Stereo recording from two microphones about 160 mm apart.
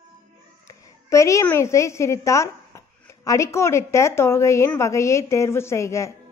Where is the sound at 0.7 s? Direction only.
20° left (ahead or behind).